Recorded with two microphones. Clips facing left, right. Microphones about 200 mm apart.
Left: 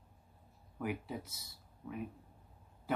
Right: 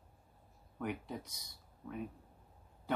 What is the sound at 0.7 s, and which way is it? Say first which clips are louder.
Speech: left 1 dB; 5° left (ahead or behind).